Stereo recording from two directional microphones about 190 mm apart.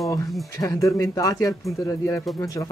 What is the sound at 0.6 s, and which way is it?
Speech, 15° left (ahead or behind).